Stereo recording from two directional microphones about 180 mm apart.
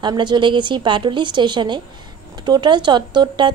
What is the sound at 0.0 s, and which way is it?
A woman's voice, 25° right (ahead or behind).